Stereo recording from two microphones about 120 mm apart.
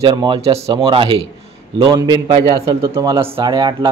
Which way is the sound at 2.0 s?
35° right (ahead or behind).